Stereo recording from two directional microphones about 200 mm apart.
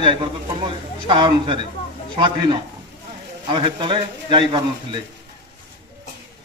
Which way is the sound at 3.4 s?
25° right (ahead or behind).